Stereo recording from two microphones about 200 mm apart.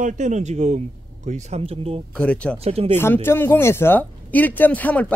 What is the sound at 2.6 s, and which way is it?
Speech, 30° right (ahead or behind).